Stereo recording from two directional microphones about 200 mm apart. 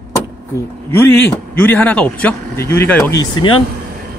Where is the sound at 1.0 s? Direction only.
10° left (ahead or behind).